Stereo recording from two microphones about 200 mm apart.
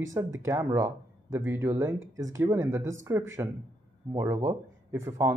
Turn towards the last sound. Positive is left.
turn(degrees=-15)  # may be behind; listen again after turning